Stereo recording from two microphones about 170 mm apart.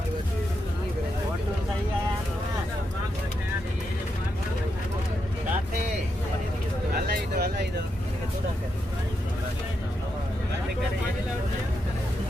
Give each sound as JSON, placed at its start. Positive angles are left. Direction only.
{"t": 7.1, "sound": "vehicle", "side_deg": -65}